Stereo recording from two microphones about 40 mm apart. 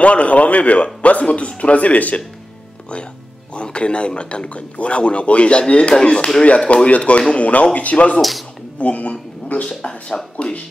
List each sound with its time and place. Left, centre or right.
0.0 s speech: left
3.5 s a man's voice: left
8.2 s speech: centre
8.7 s speech: left